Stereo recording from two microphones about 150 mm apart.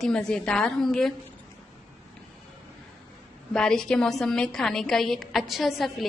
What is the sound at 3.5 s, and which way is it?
A woman's voice, 5° left (ahead or behind).